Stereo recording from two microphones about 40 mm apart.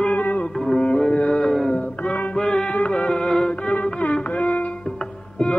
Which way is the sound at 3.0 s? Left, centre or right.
Centre.